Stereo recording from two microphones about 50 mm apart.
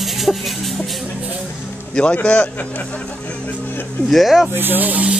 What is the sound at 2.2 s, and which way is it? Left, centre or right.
Speech, left.